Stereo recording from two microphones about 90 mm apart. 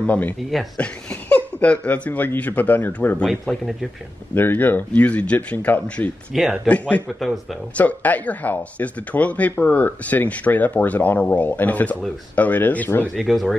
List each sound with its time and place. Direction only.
0.0 s speech: 15° left (ahead or behind)
1.3 s speech: 15° left (ahead or behind)
3.3 s speech: centre (ahead or behind)
4.4 s speech: 20° left (ahead or behind)
6.3 s speech: 5° right (ahead or behind)
7.7 s speech: 15° left (ahead or behind)
13.1 s speech: centre (ahead or behind)